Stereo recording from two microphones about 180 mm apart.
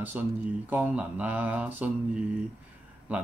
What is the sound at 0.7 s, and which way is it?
Mantra, 10° right (ahead or behind).